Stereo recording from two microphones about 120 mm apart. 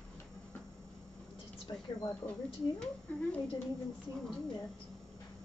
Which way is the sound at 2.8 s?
10° left (ahead or behind).